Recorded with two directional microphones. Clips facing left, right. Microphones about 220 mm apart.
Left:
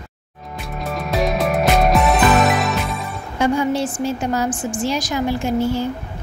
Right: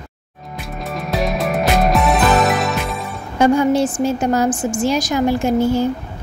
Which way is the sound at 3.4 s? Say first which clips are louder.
Right 5 dB; 45° right (ahead or behind).